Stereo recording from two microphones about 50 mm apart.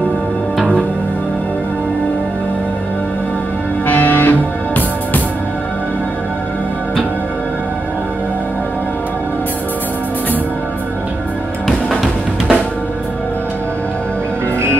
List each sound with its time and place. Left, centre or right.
3.8 s music: left
11.9 s drum: centre